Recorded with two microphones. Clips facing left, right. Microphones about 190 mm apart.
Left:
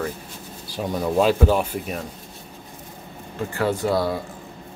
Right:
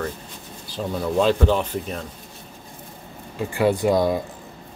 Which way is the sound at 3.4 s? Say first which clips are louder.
Right 3 dB; 15° right (ahead or behind).